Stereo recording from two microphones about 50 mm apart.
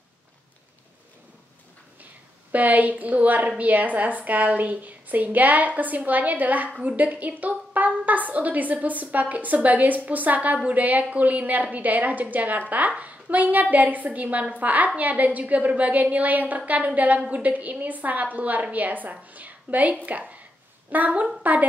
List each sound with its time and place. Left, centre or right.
2.5 s a woman's voice: right